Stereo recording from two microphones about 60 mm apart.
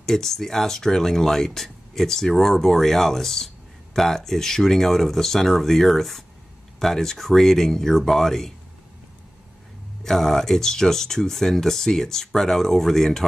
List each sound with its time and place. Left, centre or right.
0.0 s speech: centre
10.0 s speech: centre